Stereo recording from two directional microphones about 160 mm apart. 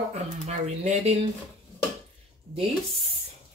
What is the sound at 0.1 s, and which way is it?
Speech, 45° right (ahead or behind).